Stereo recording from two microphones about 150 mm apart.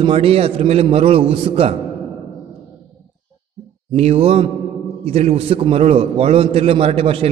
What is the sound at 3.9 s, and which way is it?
A man's voice, 45° right (ahead or behind).